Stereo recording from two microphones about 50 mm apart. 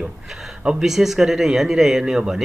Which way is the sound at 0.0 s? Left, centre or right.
Centre.